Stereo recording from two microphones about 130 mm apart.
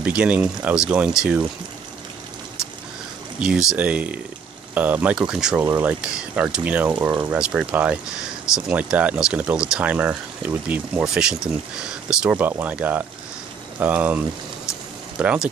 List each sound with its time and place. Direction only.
0.0 s speech: 10° right (ahead or behind)
3.3 s speech: 5° right (ahead or behind)